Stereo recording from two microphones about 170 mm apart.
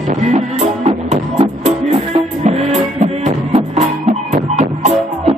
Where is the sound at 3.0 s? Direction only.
40° right (ahead or behind).